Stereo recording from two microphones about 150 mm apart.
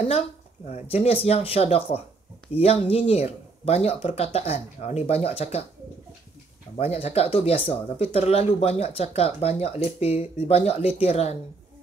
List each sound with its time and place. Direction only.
0.7 s speech: 45° left (ahead or behind)
6.8 s speech: 40° left (ahead or behind)